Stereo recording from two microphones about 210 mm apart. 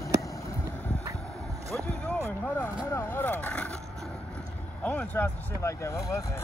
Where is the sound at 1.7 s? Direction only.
5° left (ahead or behind).